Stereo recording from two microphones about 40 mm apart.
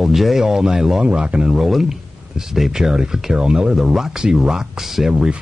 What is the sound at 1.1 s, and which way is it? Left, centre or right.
Speech, right.